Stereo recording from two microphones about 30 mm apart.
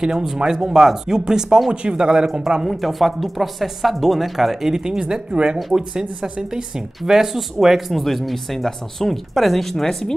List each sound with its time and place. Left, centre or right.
0.0 s speech: right
1.7 s speech: right
2.2 s speech: centre
2.6 s speech: centre
5.3 s speech: right; by 7.4 s centre
7.5 s speech: centre